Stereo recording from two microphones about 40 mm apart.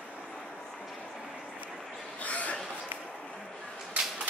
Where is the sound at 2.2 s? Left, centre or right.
Left.